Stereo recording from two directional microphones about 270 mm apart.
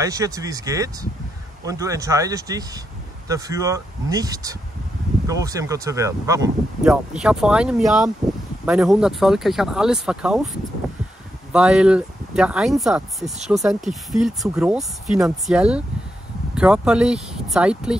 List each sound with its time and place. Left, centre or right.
0.0 s speech: centre
11.5 s speech: centre